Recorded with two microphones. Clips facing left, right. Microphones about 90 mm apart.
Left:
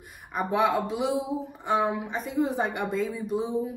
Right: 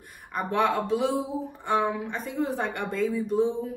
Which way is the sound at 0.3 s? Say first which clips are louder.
Left 1 dB; 5° left (ahead or behind).